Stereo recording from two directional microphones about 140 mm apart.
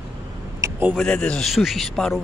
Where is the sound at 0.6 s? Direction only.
15° right (ahead or behind).